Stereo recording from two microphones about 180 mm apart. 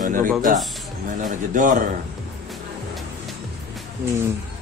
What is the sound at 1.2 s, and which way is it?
Speech, 45° right (ahead or behind).